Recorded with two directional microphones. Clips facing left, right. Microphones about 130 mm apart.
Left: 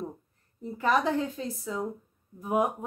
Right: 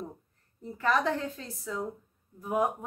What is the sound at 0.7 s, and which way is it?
A woman's voice, 15° left (ahead or behind).